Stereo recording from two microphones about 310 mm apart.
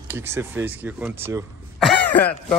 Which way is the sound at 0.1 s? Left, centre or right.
Centre.